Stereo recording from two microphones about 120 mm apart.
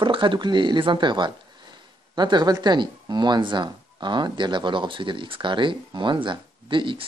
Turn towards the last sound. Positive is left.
turn(degrees=-45)  # may be behind; listen again after turning